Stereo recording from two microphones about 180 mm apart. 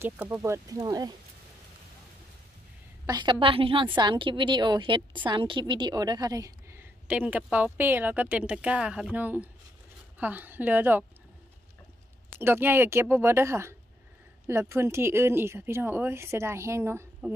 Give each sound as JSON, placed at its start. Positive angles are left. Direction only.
{"t": 0.0, "sound": "speech", "side_deg": -15}
{"t": 3.1, "sound": "a woman's voice", "side_deg": -25}
{"t": 12.4, "sound": "speech", "side_deg": -10}